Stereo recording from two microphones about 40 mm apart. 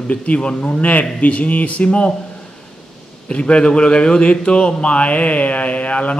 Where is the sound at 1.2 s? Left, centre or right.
Left.